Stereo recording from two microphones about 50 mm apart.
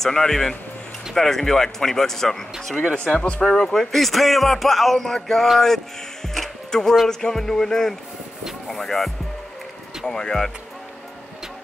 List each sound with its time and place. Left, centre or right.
0.0 s speech: centre
3.0 s speech: left
3.4 s speech: centre
6.2 s music: centre
7.1 s speech: centre